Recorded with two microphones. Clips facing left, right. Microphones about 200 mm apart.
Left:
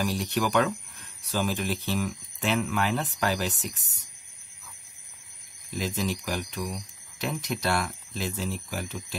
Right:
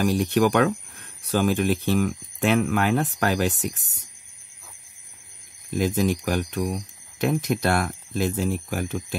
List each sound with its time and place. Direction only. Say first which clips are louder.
0.0 s speech: right 7 dB; 55° right (ahead or behind)
5.7 s speech: right 7 dB; 50° right (ahead or behind)